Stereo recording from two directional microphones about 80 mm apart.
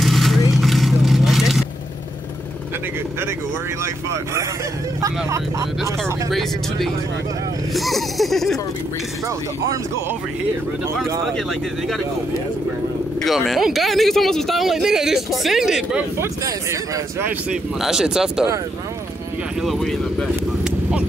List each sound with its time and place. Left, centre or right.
0.0 s vehicle: centre
3.8 s speech: right
7.7 s speech: centre
13.5 s speech: centre
17.7 s speech: centre
19.6 s speech: centre